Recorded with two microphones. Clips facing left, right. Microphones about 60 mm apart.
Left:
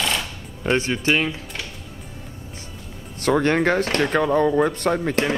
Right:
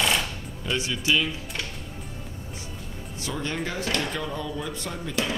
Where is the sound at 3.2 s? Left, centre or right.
Left.